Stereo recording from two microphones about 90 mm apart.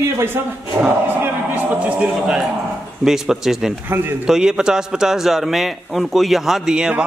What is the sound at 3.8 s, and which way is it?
Speech, 20° right (ahead or behind).